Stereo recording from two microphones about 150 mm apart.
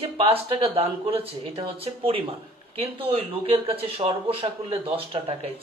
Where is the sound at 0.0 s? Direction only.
40° right (ahead or behind).